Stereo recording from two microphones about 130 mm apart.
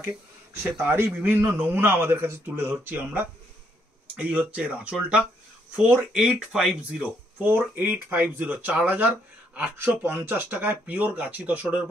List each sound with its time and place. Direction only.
0.7 s speech: 15° right (ahead or behind)